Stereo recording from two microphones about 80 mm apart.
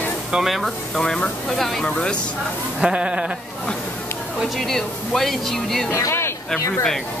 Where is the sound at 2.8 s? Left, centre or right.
Centre.